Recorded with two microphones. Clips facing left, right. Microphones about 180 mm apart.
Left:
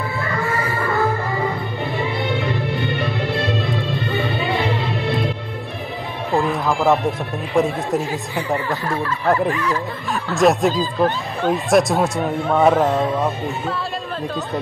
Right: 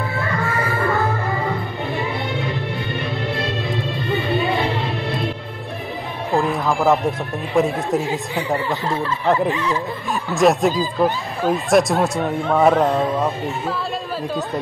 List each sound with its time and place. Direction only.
6.3 s speech: centre (ahead or behind)
8.1 s speech: 20° right (ahead or behind)
10.3 s speech: centre (ahead or behind)